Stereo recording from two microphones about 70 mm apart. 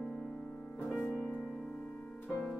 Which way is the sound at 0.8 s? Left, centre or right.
Centre.